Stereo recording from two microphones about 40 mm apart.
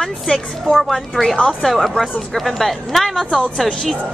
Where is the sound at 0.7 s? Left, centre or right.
Centre.